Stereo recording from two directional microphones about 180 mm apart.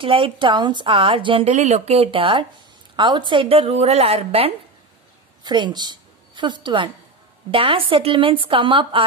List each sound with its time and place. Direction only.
0.0 s a woman's voice: 30° right (ahead or behind)